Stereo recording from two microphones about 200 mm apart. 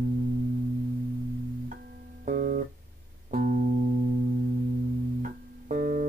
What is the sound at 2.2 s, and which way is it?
Guitar, 45° right (ahead or behind).